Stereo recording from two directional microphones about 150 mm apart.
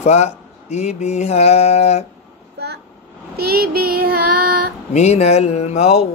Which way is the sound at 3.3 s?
90° right.